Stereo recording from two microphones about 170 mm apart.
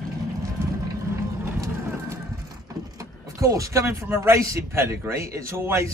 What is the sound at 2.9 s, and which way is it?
Speech, 20° right (ahead or behind).